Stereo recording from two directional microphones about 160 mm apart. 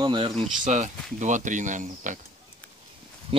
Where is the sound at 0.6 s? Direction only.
50° right (ahead or behind).